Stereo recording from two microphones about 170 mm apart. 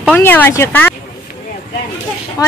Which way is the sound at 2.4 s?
20° left (ahead or behind).